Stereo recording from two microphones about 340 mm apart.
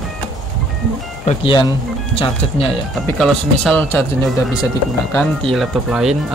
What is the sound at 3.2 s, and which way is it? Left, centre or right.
Speech, centre.